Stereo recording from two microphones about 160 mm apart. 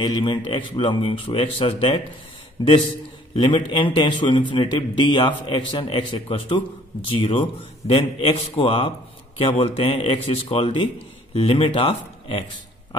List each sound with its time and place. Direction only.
0.0 s a man's voice: 30° left (ahead or behind)